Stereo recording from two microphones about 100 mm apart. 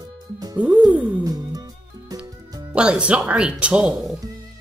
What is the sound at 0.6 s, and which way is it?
Speech, 15° right (ahead or behind).